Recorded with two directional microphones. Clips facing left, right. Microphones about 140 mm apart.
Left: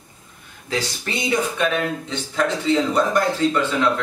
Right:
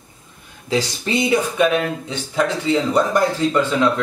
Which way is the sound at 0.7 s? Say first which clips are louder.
Right 5 dB; 20° right (ahead or behind).